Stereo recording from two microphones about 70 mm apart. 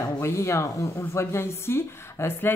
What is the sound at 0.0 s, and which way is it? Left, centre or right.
Speech, left.